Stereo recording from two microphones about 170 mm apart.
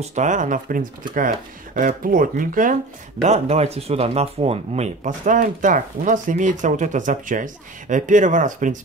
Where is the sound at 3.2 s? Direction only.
40° right (ahead or behind).